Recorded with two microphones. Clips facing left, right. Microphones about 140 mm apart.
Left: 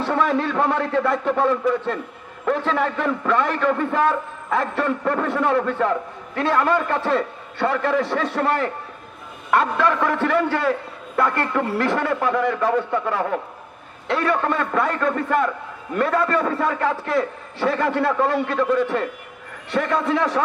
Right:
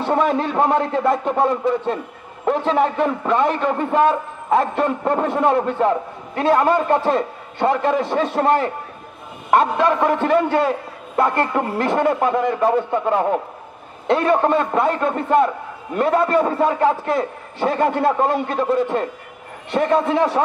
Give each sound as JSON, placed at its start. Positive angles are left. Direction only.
{"t": 0.1, "sound": "a man's voice", "side_deg": -25}
{"t": 18.0, "sound": "a man's voice", "side_deg": -25}